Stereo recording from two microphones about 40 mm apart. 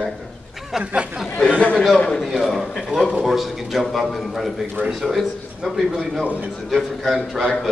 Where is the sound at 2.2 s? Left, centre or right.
Centre.